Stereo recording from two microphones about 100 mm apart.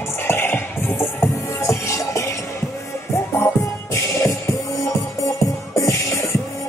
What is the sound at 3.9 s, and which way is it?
Music, 30° left (ahead or behind).